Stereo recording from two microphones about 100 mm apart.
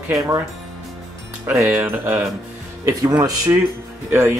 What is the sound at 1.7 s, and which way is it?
Speech, 20° right (ahead or behind).